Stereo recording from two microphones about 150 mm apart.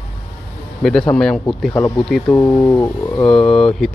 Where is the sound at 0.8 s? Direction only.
5° left (ahead or behind).